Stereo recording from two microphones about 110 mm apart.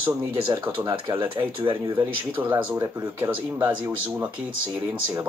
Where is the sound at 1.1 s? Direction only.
20° right (ahead or behind).